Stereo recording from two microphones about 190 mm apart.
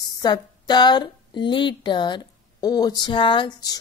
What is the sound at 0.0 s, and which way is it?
A woman's voice, 20° left (ahead or behind).